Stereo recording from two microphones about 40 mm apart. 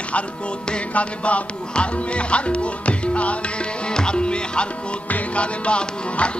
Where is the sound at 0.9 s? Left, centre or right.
Left.